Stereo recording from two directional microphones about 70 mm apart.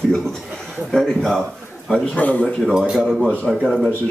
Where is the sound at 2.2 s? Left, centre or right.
Left.